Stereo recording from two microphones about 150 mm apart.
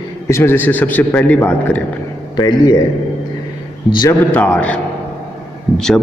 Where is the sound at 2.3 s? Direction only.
30° left (ahead or behind).